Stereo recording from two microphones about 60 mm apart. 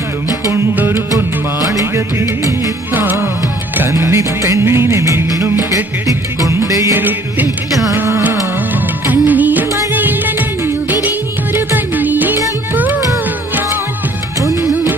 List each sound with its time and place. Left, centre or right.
2.9 s music: right
3.9 s music: right
4.6 s music of bollywood: right
6.5 s music: right
6.9 s music: right
9.0 s music of bollywood: right
9.9 s music: right